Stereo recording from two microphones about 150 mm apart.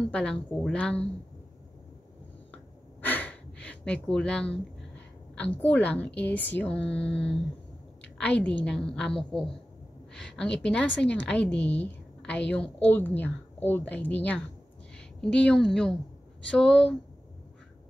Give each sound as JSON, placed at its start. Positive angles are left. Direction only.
{"t": 0.1, "sound": "a woman's voice", "side_deg": 5}
{"t": 3.0, "sound": "a sound", "side_deg": 10}
{"t": 5.7, "sound": "a woman's voice", "side_deg": 10}